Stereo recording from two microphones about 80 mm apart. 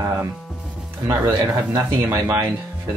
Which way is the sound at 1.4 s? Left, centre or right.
Right.